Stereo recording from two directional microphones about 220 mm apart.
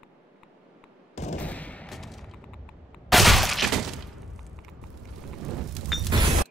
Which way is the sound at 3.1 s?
Centre (ahead or behind).